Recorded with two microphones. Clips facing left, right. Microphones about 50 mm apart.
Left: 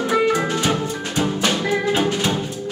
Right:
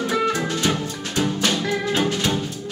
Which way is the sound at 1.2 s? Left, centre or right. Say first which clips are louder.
Left 1 dB; centre.